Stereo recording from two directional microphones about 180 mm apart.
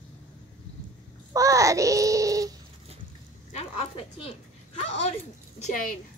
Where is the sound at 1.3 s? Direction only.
20° right (ahead or behind).